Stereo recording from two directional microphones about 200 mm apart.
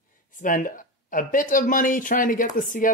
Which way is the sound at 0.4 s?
45° left (ahead or behind).